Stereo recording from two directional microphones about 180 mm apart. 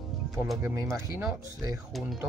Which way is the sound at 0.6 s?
15° right (ahead or behind).